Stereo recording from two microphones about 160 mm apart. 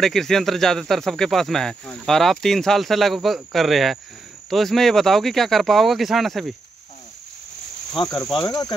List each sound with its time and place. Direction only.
0.0 s speech: centre (ahead or behind)
8.0 s cricket: 25° left (ahead or behind)